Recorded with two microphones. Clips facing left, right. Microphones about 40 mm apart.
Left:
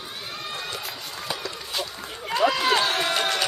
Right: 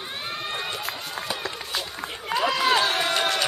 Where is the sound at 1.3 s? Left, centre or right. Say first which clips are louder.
Left 1 dB; centre.